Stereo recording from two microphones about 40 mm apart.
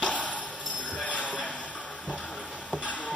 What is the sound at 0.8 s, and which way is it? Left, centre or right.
Jingle bell, left.